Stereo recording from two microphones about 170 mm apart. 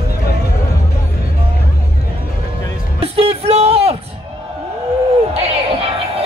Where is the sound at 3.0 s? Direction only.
35° right (ahead or behind).